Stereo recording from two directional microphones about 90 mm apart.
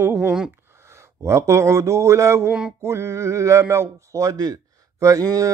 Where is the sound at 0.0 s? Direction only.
25° right (ahead or behind).